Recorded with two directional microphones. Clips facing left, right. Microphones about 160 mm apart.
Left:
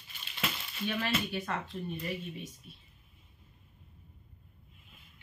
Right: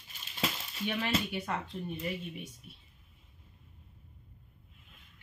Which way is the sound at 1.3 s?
10° right (ahead or behind).